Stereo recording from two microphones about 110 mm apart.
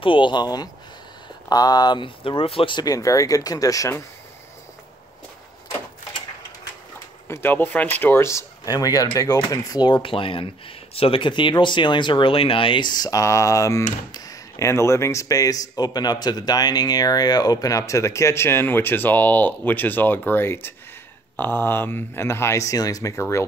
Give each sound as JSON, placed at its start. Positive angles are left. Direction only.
{"t": 0.0, "sound": "speech", "side_deg": 50}
{"t": 2.8, "sound": "speech", "side_deg": 30}
{"t": 7.2, "sound": "speech", "side_deg": 20}